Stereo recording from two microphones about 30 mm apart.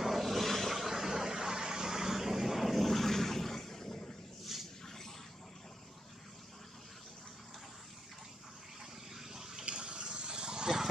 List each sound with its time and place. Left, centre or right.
0.0 s vehicle: centre; by 4.1 s left
4.5 s a sound: centre
4.8 s a sound: centre
9.1 s vehicle: centre
9.7 s water: right
10.1 s dog: right